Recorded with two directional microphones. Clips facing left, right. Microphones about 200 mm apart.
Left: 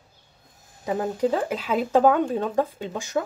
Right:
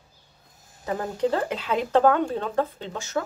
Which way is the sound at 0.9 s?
10° left (ahead or behind).